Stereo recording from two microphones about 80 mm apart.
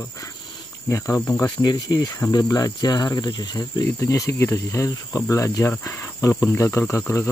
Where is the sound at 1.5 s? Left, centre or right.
Left.